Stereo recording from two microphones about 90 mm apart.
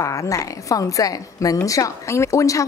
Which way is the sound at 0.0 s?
35° left (ahead or behind).